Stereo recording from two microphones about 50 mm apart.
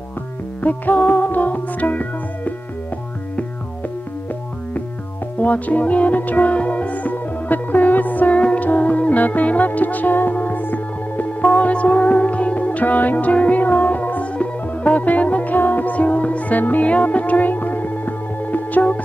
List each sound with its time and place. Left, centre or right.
0.6 s music: left
5.4 s music: left
8.4 s music: left